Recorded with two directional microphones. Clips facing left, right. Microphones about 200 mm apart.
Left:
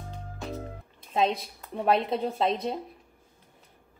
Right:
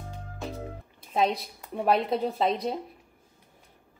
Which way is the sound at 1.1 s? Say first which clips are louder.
Even; centre (ahead or behind).